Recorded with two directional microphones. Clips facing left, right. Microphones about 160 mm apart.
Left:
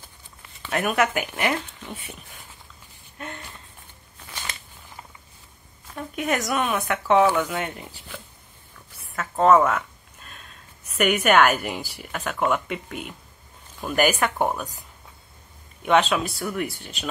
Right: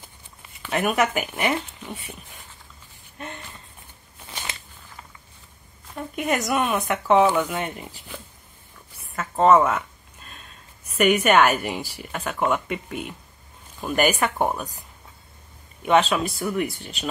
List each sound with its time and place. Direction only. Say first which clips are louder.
0.6 s speech: right 1 dB; 5° right (ahead or behind)
4.3 s walk: right 1 dB; 20° right (ahead or behind)
5.9 s speech: right 1 dB; centre (ahead or behind)
9.1 s speech: right 1 dB; 5° right (ahead or behind)
11.0 s speech: right 1 dB; centre (ahead or behind)
15.8 s speech: right 1 dB; centre (ahead or behind)